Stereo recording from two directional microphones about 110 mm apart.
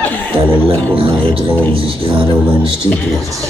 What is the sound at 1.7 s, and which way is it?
Speech, 55° right (ahead or behind).